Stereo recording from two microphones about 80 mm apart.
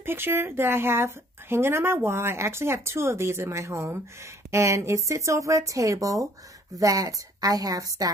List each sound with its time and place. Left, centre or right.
0.0 s a woman's voice: right